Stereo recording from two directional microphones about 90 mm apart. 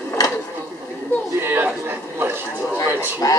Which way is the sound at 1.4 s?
20° right (ahead or behind).